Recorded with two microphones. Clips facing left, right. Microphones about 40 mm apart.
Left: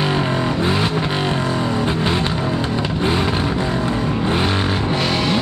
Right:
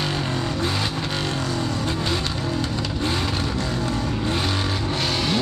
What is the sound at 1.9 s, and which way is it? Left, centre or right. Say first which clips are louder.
Vehicle: left 5 dB; left.